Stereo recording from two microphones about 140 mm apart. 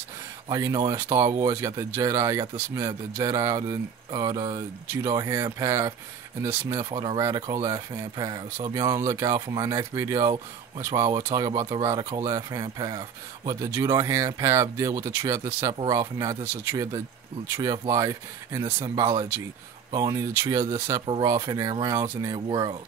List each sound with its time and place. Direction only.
0.5 s speech: 25° right (ahead or behind)